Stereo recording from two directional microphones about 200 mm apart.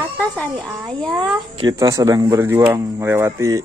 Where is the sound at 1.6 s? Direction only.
15° right (ahead or behind).